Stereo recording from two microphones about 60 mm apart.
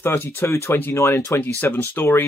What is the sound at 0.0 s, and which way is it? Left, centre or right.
Speech, left.